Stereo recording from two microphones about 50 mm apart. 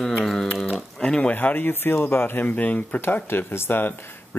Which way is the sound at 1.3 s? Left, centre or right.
Left.